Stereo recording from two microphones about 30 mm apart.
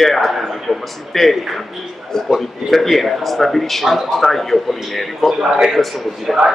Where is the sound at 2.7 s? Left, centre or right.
Centre.